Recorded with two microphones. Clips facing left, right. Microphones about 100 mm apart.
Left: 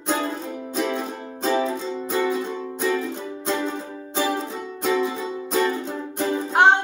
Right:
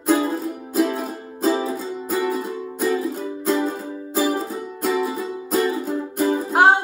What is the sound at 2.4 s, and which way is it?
Music, 40° right (ahead or behind).